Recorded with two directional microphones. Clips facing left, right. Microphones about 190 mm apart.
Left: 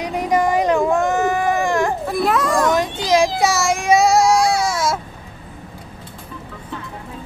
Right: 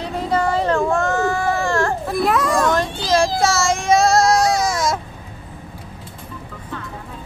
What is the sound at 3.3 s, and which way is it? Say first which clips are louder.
Child singing: even; 15° left (ahead or behind).